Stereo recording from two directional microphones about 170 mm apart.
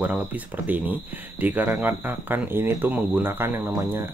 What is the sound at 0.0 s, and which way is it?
Speech, 10° right (ahead or behind).